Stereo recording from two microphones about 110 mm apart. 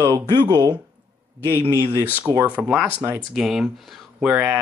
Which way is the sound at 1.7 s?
25° right (ahead or behind).